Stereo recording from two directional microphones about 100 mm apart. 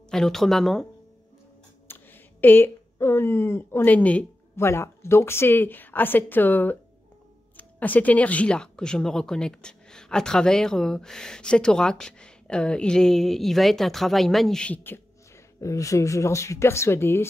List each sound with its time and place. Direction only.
0.1 s speech: 5° left (ahead or behind)
1.9 s speech: 20° left (ahead or behind)
4.6 s speech: 25° left (ahead or behind)
15.6 s speech: 35° left (ahead or behind)